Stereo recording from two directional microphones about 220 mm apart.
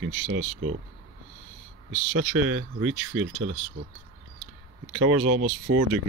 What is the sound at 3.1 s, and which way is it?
Speech, 75° right (ahead or behind).